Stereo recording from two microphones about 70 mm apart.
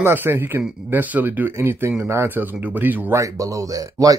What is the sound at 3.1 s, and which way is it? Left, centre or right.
Speech, right.